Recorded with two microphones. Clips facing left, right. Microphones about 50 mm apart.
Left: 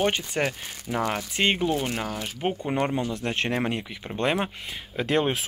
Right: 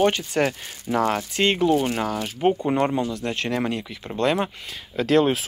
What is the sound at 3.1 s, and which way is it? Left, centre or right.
Speech, left.